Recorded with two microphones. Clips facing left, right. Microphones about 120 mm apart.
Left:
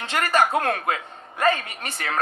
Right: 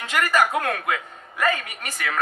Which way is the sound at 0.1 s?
30° left (ahead or behind).